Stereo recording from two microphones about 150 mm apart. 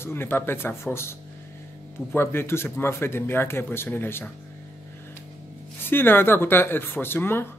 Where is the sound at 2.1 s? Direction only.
15° left (ahead or behind).